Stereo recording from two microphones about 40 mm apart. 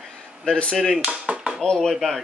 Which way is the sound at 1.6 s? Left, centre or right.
Centre.